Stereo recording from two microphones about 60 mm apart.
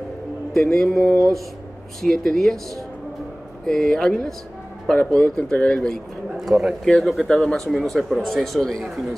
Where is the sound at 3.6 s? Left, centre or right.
Centre.